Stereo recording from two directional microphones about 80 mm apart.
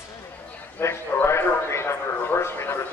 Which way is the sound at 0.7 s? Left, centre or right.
Left.